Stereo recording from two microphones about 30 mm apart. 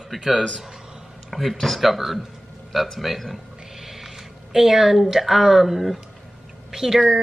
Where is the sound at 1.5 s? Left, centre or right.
Centre.